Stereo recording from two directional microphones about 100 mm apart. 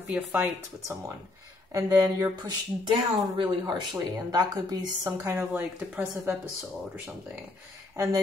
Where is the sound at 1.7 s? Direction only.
35° right (ahead or behind).